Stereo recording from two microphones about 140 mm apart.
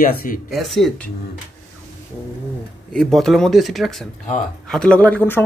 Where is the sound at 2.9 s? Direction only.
5° left (ahead or behind).